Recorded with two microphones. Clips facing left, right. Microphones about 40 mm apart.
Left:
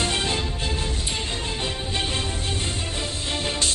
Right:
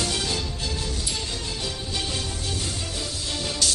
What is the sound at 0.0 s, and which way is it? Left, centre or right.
Music, left.